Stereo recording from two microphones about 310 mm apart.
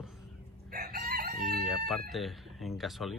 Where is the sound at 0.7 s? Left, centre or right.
Right.